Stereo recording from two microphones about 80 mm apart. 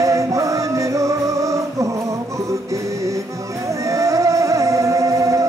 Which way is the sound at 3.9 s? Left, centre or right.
Right.